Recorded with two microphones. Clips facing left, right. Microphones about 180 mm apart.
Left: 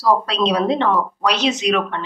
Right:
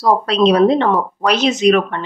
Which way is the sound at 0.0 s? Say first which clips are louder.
Right 4 dB; 50° right (ahead or behind).